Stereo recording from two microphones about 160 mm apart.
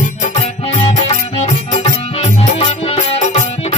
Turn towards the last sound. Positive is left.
turn(degrees=40)  # may be behind; listen again after turning